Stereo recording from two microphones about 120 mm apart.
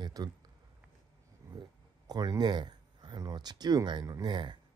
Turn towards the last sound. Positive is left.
turn(degrees=-40)  # may be behind; listen again after turning